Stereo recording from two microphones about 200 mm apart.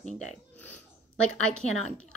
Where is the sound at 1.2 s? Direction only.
90° right.